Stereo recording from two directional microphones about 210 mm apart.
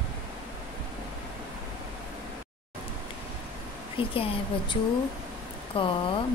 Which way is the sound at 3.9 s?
25° left (ahead or behind).